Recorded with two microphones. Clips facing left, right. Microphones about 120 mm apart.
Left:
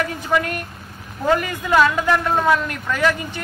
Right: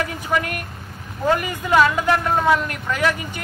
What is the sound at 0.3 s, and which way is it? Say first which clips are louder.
A man's voice: left 3 dB; 10° right (ahead or behind).